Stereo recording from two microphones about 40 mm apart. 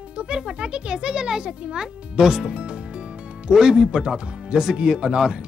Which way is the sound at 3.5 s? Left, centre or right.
Centre.